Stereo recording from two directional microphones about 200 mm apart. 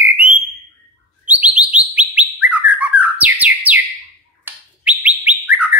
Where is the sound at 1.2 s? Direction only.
10° right (ahead or behind).